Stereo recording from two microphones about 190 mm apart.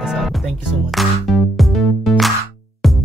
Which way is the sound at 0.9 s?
Centre (ahead or behind).